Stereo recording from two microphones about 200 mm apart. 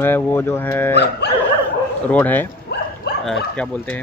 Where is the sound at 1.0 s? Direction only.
55° left (ahead or behind).